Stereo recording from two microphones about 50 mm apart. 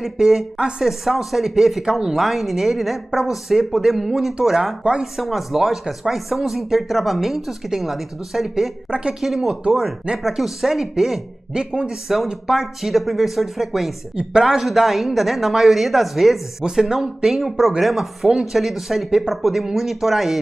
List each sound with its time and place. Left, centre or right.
0.0 s speech: centre
0.6 s speech: centre
0.8 s speech: centre
11.5 s speech: centre
12.4 s speech: centre
14.1 s speech: centre